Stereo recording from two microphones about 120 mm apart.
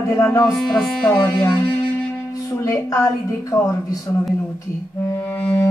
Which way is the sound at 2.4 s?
25° left (ahead or behind).